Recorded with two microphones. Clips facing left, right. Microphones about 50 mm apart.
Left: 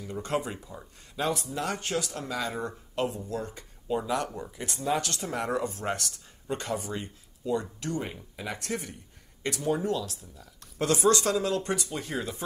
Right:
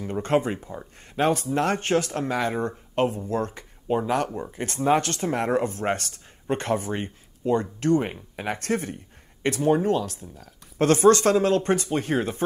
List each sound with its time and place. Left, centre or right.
0.0 s speech: right